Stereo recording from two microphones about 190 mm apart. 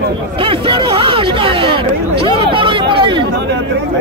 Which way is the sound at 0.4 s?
30° right (ahead or behind).